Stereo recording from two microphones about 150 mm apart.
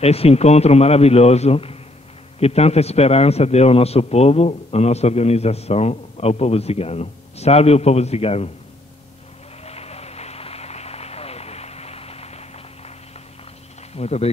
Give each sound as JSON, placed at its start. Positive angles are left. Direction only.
{"t": 0.0, "sound": "a man's voice", "side_deg": 45}
{"t": 9.7, "sound": "vehicle", "side_deg": 45}
{"t": 13.9, "sound": "a man's voice", "side_deg": 45}